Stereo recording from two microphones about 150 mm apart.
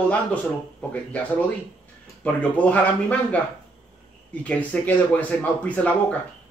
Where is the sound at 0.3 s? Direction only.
10° left (ahead or behind).